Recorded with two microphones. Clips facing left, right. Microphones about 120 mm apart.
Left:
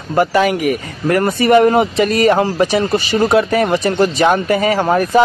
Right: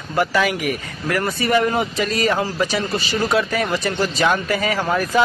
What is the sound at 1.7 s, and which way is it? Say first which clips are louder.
Speech: left 8 dB; 60° left (ahead or behind).